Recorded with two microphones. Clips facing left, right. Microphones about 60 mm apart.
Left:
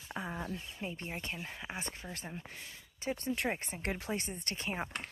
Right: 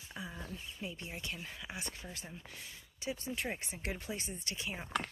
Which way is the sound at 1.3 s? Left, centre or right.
Left.